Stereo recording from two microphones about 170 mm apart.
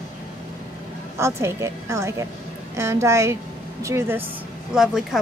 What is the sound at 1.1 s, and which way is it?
A woman's voice, 15° right (ahead or behind).